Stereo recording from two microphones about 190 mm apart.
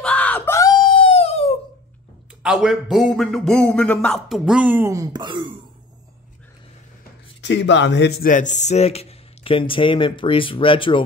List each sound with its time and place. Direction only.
0.0 s screaming: 5° left (ahead or behind); by 1.6 s 30° left (ahead or behind)
2.4 s a man's voice: 5° right (ahead or behind); by 5.5 s 25° right (ahead or behind)
7.4 s a man's voice: 70° left (ahead or behind)
8.3 s speech: 40° left (ahead or behind)